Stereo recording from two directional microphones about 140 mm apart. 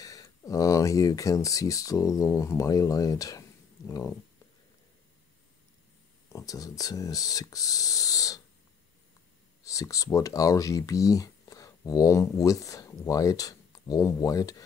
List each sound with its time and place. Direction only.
0.0 s speech: 25° left (ahead or behind)
6.2 s speech: 25° left (ahead or behind)
9.6 s speech: 25° left (ahead or behind)